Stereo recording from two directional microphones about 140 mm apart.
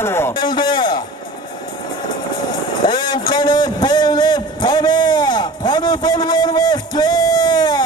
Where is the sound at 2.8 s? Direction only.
30° left (ahead or behind).